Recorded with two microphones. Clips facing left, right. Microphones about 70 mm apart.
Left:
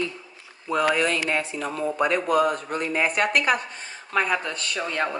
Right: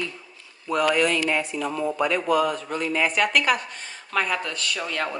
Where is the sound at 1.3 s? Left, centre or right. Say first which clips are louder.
Right 1 dB; left.